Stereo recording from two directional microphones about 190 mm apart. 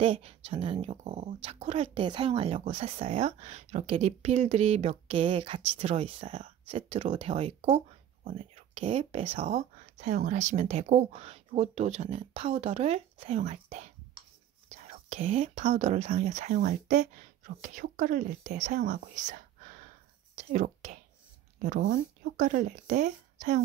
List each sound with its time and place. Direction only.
0.0 s speech: 30° right (ahead or behind)
7.6 s a sound: 45° right (ahead or behind)
8.3 s speech: 30° right (ahead or behind)
18.9 s whispering: 40° right (ahead or behind)
20.3 s speech: 40° right (ahead or behind)